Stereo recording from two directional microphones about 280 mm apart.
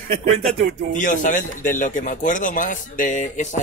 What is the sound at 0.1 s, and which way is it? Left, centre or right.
Speech, right.